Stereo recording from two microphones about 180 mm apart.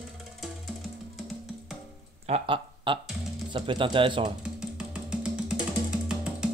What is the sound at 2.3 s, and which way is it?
Speech, 30° right (ahead or behind).